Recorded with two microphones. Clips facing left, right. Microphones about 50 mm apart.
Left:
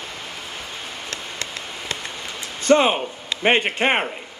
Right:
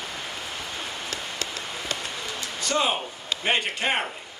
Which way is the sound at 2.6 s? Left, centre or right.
Left.